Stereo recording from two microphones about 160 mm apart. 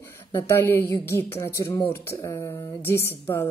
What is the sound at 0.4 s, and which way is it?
Speech, 15° left (ahead or behind).